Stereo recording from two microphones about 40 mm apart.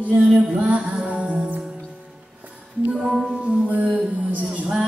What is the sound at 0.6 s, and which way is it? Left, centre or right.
Music, right.